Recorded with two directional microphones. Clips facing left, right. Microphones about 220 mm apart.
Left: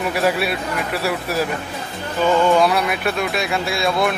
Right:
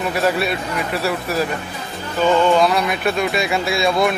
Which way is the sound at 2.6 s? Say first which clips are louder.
Right 1 dB; 5° left (ahead or behind).